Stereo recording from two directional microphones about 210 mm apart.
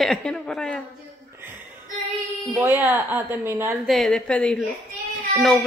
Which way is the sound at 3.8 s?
Centre (ahead or behind).